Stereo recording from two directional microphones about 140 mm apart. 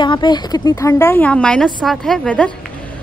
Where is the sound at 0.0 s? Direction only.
35° left (ahead or behind).